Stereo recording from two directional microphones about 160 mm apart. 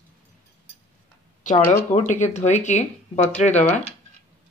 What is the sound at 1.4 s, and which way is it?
Speech, 50° left (ahead or behind).